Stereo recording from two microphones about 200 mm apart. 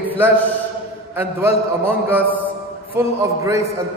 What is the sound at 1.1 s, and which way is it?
A man's voice, 10° right (ahead or behind).